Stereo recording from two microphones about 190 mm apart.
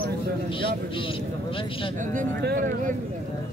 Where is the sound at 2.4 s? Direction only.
50° right (ahead or behind).